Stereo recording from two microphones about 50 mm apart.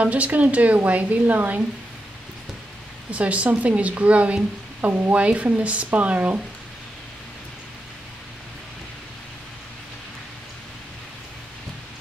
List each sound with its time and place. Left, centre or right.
0.0 s a woman's voice: right
3.1 s a woman's voice: right